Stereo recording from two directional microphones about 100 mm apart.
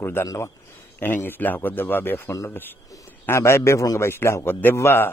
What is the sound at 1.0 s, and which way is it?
A man's voice, 20° left (ahead or behind).